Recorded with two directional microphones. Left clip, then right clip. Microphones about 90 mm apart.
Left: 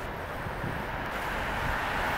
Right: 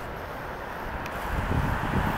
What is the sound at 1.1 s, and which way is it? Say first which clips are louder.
Vehicle: right 1 dB; 45° left (ahead or behind).